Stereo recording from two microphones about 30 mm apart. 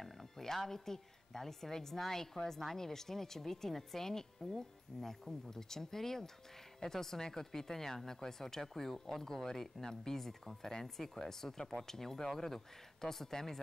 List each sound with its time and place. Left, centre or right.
0.0 s speech: centre